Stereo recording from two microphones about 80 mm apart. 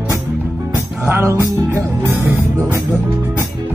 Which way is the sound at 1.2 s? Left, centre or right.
Right.